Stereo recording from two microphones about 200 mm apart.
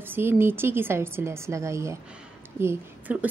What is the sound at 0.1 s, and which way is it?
A woman's voice, 10° right (ahead or behind).